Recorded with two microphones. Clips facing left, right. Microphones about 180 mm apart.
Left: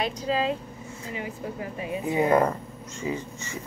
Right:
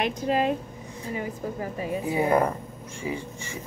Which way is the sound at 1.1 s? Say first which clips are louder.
Right 3 dB; 40° right (ahead or behind).